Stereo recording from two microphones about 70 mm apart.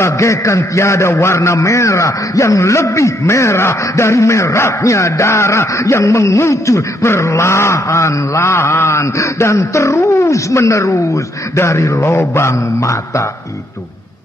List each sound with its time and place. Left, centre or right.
0.0 s a man's voice: left